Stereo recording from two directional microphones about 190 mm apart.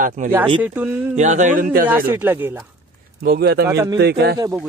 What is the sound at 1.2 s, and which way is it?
Speech, 40° right (ahead or behind).